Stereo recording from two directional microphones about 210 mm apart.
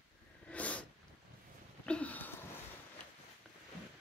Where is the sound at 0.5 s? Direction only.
5° left (ahead or behind).